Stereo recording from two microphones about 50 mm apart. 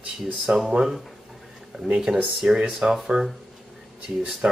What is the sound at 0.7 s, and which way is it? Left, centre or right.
Speech, centre.